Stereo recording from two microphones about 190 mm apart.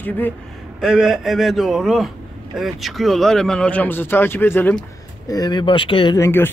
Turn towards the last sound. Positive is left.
turn(degrees=15)  # may be behind; listen again after turning